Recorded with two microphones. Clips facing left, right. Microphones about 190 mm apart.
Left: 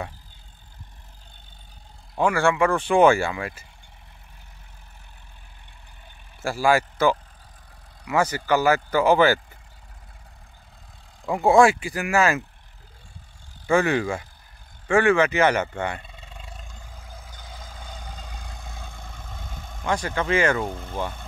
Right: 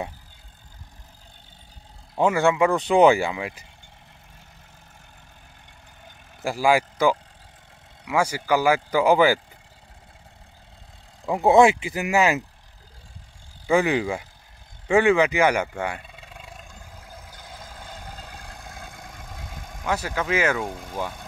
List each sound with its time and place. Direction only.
2.1 s speech: 20° right (ahead or behind)
6.4 s speech: 15° right (ahead or behind)
11.2 s speech: 15° right (ahead or behind)
13.7 s speech: 15° right (ahead or behind)
14.9 s roar: 15° right (ahead or behind); by 18.9 s centre (ahead or behind)
19.0 s vehicle: 10° right (ahead or behind)
20.8 s speech: 5° right (ahead or behind)